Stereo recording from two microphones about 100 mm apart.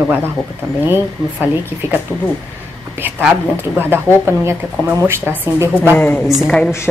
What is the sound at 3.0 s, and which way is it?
Speech, 15° right (ahead or behind).